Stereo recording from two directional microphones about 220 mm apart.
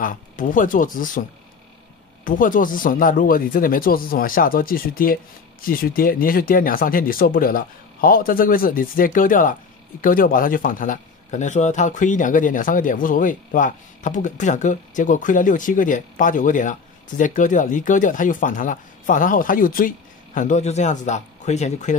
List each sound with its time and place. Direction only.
0.0 s speech: 40° left (ahead or behind)
2.2 s speech: 40° left (ahead or behind)